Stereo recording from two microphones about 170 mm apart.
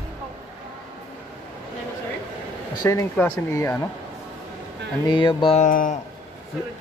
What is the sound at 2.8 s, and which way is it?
Speech, 15° left (ahead or behind).